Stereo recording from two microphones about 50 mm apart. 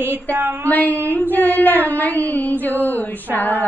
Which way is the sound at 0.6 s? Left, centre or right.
Left.